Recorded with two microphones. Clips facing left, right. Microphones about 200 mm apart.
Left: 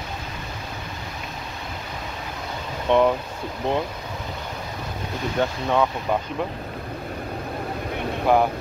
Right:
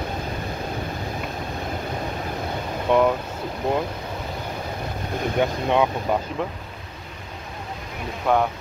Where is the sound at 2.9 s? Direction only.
5° right (ahead or behind).